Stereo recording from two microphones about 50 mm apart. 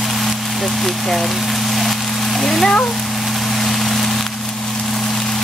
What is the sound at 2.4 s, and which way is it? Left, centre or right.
Speech, centre.